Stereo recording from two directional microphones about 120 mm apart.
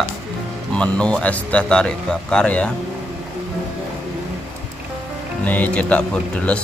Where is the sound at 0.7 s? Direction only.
10° left (ahead or behind).